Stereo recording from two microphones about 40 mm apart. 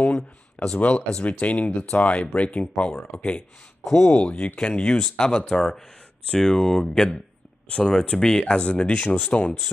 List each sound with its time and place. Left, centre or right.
0.0 s a sound: left
0.7 s speech: left
3.2 s speech: centre
3.9 s speech: left